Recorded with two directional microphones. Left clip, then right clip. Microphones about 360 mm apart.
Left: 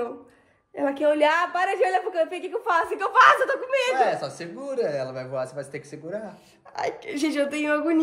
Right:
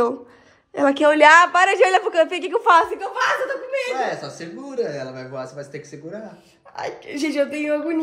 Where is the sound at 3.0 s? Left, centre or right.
Centre.